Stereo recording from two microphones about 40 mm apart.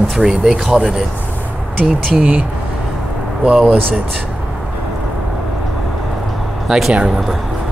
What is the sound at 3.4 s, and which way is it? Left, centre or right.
Speech, right.